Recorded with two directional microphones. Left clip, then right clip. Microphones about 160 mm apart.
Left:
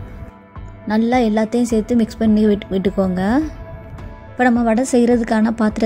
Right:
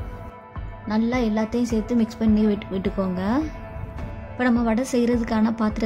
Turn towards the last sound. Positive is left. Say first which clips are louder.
# left 6 dB
turn(degrees=30)  # may be behind; listen again after turning